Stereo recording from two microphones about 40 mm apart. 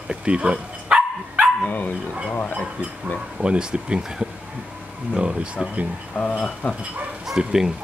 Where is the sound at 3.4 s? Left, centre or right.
Right.